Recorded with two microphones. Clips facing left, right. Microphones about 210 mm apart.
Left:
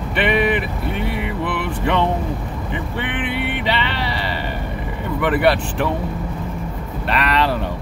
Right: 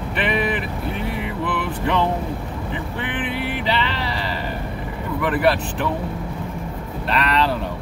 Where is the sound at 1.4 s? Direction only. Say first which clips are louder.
Even; 65° left (ahead or behind).